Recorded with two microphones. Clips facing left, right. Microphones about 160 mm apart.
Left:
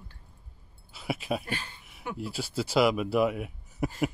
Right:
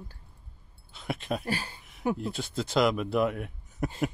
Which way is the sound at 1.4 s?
35° right (ahead or behind).